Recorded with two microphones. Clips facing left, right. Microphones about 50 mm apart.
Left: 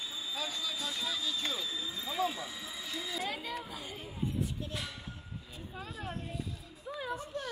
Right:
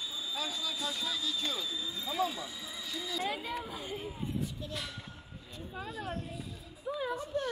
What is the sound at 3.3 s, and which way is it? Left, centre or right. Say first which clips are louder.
Speech: right 2 dB; right.